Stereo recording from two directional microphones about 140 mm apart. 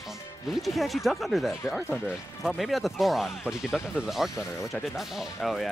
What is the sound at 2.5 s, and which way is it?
Speech, centre (ahead or behind).